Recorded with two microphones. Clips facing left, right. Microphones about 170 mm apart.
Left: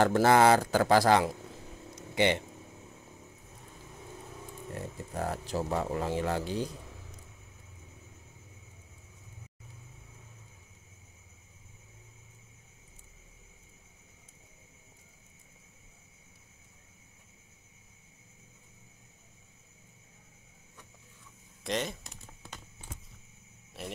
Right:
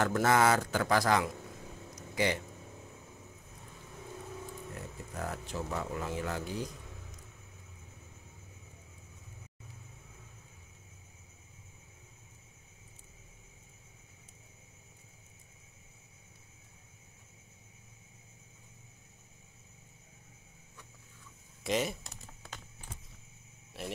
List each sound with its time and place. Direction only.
0.0 s speech: 30° left (ahead or behind)
2.0 s a sound: 25° left (ahead or behind)
4.7 s speech: 30° left (ahead or behind)
21.6 s speech: 5° right (ahead or behind)
23.8 s speech: centre (ahead or behind)